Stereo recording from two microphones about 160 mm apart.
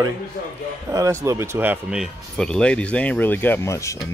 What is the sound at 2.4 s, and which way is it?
Speech, 5° left (ahead or behind).